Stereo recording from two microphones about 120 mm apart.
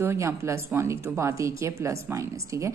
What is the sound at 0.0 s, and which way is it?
A woman's voice, 20° right (ahead or behind).